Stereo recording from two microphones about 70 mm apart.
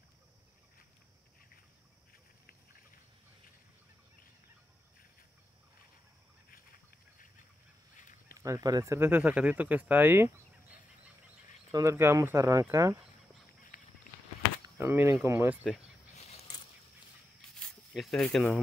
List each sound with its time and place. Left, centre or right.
8.4 s speech: right
8.9 s speech: right
9.2 s speech: right
11.8 s speech: right
14.8 s speech: right
17.9 s speech: centre